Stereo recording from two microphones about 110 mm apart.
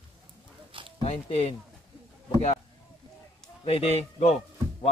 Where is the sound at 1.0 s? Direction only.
65° left (ahead or behind).